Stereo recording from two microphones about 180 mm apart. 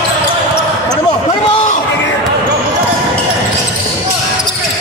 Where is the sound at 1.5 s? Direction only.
45° left (ahead or behind).